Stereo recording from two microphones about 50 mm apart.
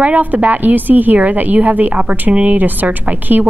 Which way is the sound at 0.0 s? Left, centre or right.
Right.